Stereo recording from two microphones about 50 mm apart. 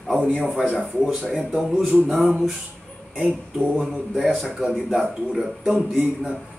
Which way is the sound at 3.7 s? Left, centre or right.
Centre.